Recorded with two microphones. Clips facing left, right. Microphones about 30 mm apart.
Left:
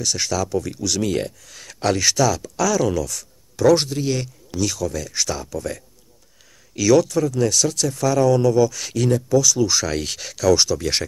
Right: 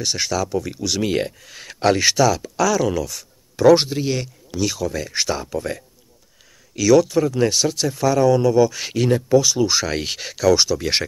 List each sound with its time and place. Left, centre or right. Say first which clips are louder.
0.0 s speech: right 1 dB; right
0.3 s speech: even; centre
6.7 s speech: right 1 dB; centre
7.1 s speech: right 2 dB; right